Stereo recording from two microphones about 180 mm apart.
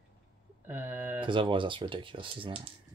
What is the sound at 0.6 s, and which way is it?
Speech, 10° right (ahead or behind).